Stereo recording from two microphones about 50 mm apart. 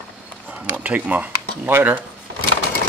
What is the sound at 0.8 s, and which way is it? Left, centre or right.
Speech, right.